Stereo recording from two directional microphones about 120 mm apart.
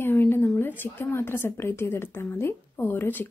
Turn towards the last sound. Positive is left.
turn(degrees=15)  # may be behind; listen again after turning